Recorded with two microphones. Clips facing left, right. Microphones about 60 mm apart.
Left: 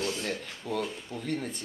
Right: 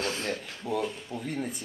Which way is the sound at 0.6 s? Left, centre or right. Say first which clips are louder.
Right 2 dB; centre.